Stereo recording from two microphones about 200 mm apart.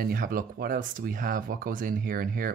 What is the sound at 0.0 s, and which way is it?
Speech, 45° right (ahead or behind).